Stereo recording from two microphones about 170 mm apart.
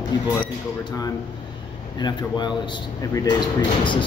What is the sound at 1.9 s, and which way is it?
Speech, 25° left (ahead or behind).